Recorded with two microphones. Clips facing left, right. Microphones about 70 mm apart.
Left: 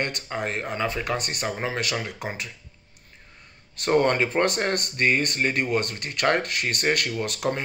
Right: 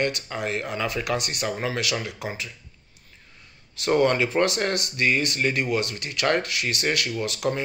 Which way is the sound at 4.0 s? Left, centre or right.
Left.